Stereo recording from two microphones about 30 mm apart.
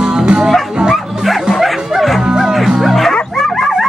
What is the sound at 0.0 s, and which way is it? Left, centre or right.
Music, right.